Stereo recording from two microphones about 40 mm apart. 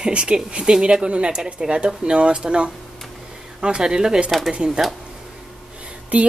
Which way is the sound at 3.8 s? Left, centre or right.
Centre.